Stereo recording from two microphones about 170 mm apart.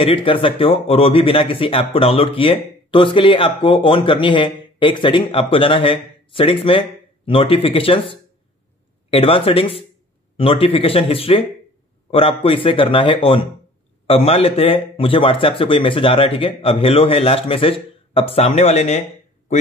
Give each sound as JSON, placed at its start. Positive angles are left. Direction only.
{"t": 0.0, "sound": "a man's voice", "side_deg": 30}